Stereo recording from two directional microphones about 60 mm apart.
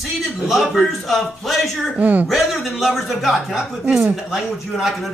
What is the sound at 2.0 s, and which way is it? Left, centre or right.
Speech, right.